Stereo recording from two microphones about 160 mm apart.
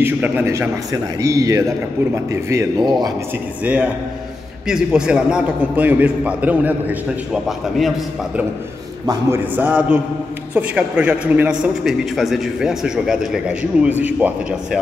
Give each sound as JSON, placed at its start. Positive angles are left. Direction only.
{"t": 0.0, "sound": "a man's voice", "side_deg": -15}
{"t": 3.6, "sound": "a man's voice", "side_deg": -10}
{"t": 9.0, "sound": "speech", "side_deg": -20}
{"t": 9.6, "sound": "a man's voice", "side_deg": -10}